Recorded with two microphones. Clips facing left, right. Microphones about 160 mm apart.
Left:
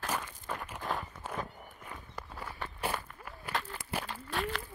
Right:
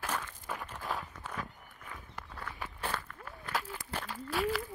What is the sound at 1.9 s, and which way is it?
Walk, 20° left (ahead or behind).